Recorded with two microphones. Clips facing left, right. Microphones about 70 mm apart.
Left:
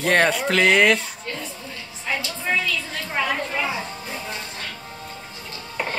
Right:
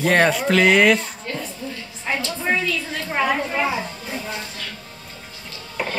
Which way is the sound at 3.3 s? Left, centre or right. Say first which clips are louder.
Right 3 dB; centre.